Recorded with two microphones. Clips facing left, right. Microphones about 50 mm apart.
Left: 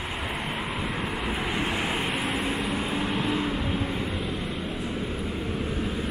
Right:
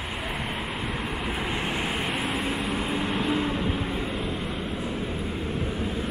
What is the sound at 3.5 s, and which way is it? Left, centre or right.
Vehicle, right.